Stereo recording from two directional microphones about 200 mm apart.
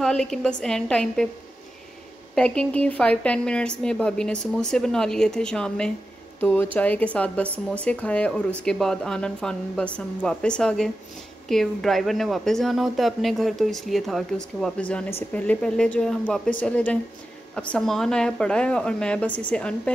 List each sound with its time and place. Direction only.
0.0 s speech: 5° left (ahead or behind)
2.3 s speech: 5° left (ahead or behind)
7.4 s speech: 10° right (ahead or behind)
7.8 s speech: 5° left (ahead or behind)